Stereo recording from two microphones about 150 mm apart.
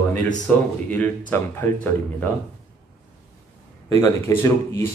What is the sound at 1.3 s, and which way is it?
Speech, 15° left (ahead or behind).